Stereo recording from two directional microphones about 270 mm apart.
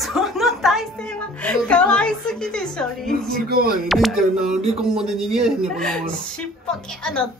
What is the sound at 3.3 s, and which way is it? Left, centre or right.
Speech, right.